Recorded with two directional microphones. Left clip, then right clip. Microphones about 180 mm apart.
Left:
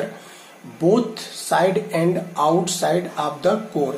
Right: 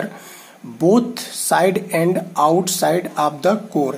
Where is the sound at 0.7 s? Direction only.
30° right (ahead or behind).